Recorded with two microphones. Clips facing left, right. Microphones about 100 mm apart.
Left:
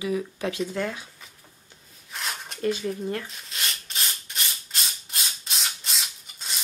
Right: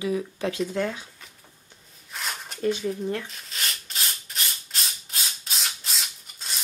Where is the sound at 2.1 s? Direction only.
Centre (ahead or behind).